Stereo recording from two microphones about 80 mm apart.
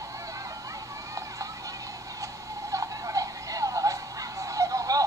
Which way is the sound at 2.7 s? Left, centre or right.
Right.